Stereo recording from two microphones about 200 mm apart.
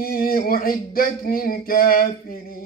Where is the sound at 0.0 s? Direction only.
45° left (ahead or behind).